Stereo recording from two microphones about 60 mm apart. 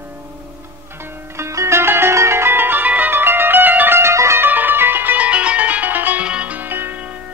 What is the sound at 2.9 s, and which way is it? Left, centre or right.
Music, right.